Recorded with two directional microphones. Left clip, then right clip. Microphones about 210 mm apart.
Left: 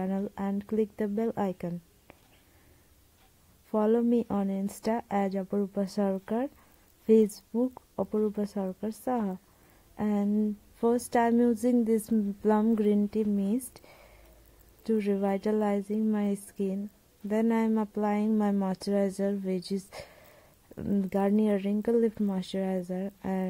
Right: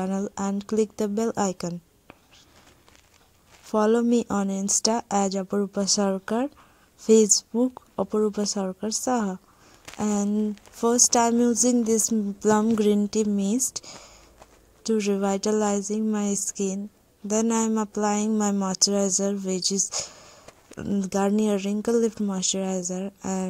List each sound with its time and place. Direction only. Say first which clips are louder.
0.0 s speech: right 5 dB; 30° right (ahead or behind)
3.7 s speech: right 5 dB; 30° right (ahead or behind)
7.5 s speech: right 5 dB; 35° right (ahead or behind)
10.3 s speech: right 3 dB; 25° right (ahead or behind)